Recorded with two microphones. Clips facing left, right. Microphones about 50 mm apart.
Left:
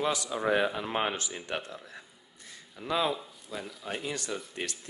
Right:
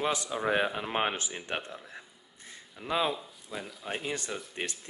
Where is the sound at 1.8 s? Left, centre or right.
Right.